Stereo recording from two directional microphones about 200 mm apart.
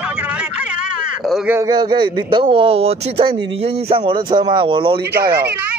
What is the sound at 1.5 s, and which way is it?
Speech, 20° right (ahead or behind).